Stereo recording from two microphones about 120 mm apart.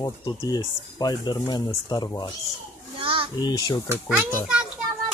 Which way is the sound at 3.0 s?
50° right (ahead or behind).